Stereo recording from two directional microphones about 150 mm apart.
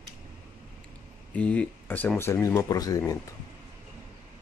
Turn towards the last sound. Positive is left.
turn(degrees=25)  # may be behind; listen again after turning